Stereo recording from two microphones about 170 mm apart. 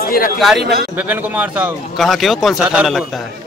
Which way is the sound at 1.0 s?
10° right (ahead or behind).